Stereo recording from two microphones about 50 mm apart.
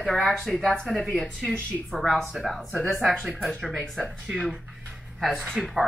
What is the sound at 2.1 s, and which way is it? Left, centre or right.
Speech, centre.